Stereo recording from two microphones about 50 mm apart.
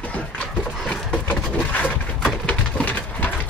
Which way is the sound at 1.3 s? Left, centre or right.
Left.